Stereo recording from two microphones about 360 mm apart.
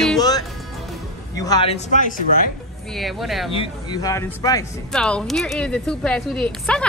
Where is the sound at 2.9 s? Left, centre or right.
Centre.